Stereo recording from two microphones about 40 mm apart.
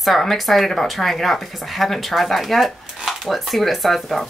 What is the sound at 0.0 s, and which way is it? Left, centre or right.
Speech, centre.